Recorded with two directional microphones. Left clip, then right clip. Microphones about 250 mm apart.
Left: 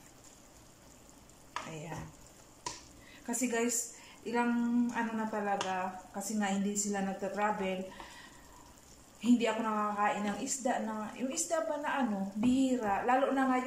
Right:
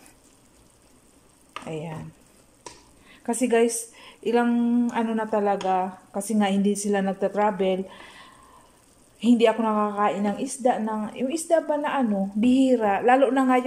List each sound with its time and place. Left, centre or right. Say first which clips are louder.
3.3 s speech: right 12 dB; right
9.2 s speech: right 11 dB; right